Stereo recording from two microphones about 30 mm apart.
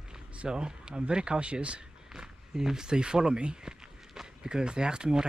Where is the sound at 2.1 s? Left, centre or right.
Centre.